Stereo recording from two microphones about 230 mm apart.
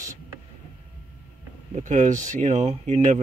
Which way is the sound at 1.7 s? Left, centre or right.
Right.